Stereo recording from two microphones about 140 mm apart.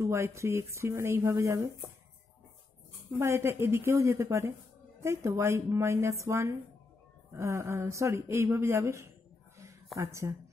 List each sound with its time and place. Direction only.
0.0 s speech: 20° right (ahead or behind)
3.2 s speech: 20° right (ahead or behind)